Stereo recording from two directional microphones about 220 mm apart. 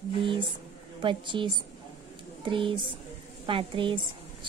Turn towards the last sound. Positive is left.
turn(degrees=-20)  # may be behind; listen again after turning